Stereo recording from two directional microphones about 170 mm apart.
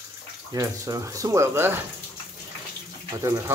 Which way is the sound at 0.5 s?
20° right (ahead or behind).